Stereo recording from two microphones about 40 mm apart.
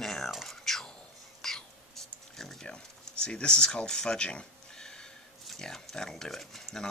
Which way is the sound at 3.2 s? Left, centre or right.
Left.